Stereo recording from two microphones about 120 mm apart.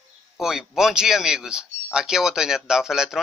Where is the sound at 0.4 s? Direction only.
5° right (ahead or behind).